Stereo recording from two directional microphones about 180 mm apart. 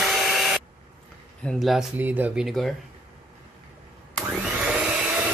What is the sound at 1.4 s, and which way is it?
Speech, centre (ahead or behind).